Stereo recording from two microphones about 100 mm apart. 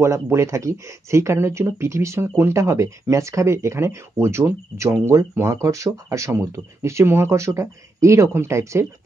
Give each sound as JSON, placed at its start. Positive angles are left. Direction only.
{"t": 0.0, "sound": "speech", "side_deg": -30}